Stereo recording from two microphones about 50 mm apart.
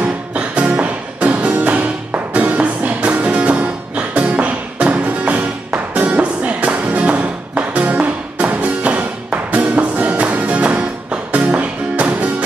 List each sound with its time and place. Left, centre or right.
0.0 s music: right